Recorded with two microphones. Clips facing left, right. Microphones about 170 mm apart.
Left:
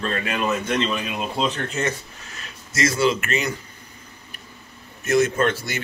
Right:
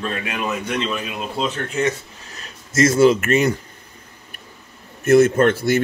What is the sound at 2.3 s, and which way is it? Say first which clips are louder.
Speech: right 1 dB; 40° right (ahead or behind).